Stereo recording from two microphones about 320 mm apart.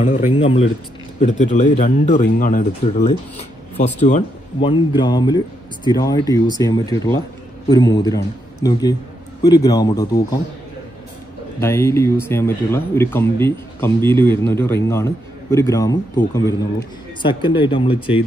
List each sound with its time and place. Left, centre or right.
0.0 s speech: centre
11.6 s speech: centre